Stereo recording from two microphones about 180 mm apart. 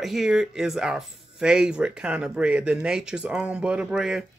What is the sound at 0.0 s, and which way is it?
Speech, centre (ahead or behind).